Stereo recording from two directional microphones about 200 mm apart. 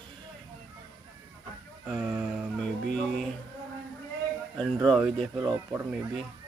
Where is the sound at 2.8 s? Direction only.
40° left (ahead or behind).